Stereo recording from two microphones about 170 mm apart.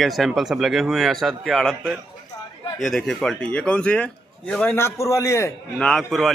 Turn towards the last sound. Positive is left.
turn(degrees=5)  # may be behind; listen again after turning